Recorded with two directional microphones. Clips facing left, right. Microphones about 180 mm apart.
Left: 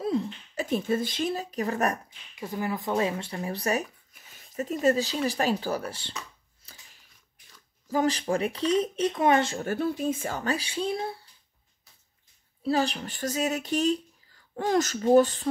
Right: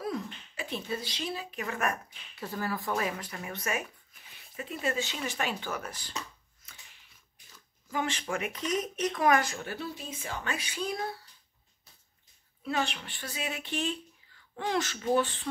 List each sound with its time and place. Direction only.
0.0 s a sound: 25° left (ahead or behind)
0.6 s speech: 45° left (ahead or behind)
2.3 s speech: 15° left (ahead or behind)
6.6 s a sound: 35° left (ahead or behind)
7.9 s speech: 35° left (ahead or behind)
9.6 s speech: 50° left (ahead or behind); by 11.1 s 25° left (ahead or behind)
12.6 s speech: 35° left (ahead or behind)